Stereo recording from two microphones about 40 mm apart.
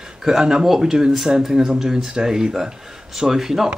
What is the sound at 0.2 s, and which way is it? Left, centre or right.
Speech, centre.